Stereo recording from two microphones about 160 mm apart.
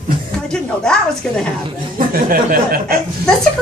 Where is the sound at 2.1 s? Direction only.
65° right (ahead or behind).